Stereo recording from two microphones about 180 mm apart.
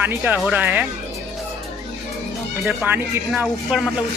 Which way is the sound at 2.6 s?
10° right (ahead or behind).